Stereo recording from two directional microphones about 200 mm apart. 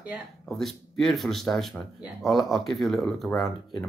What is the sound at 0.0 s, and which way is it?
Speech, centre (ahead or behind).